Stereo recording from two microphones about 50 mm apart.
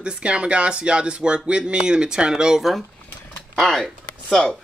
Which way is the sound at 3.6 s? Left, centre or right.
Centre.